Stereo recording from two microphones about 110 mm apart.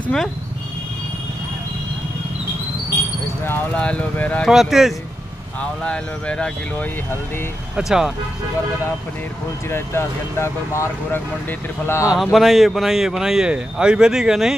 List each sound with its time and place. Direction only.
0.0 s speech: 5° left (ahead or behind)
3.4 s speech: 15° left (ahead or behind)
4.5 s speech: 5° right (ahead or behind)
5.6 s speech: 10° left (ahead or behind)
7.7 s speech: 5° right (ahead or behind)
9.7 s speech: 20° left (ahead or behind)
12.1 s speech: centre (ahead or behind)